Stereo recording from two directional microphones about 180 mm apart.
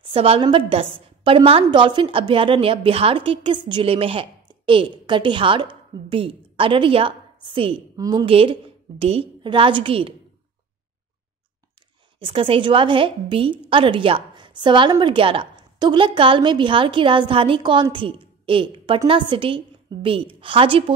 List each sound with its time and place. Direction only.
0.0 s a woman's voice: 30° right (ahead or behind)
12.2 s a woman's voice: 30° right (ahead or behind)